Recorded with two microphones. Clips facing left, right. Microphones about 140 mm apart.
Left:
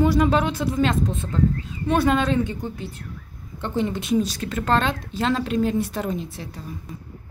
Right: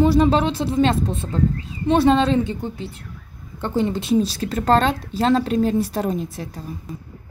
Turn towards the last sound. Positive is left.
turn(degrees=-40)  # may be behind; listen again after turning